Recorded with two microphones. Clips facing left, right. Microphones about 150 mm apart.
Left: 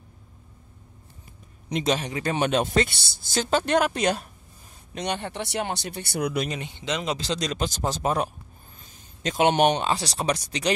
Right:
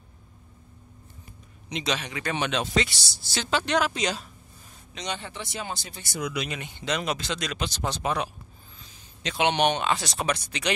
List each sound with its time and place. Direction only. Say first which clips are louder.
1.7 s speech: left 5 dB; 50° left (ahead or behind)
6.8 s speech: even; 20° left (ahead or behind)
7.2 s speech: left 4 dB; 35° left (ahead or behind)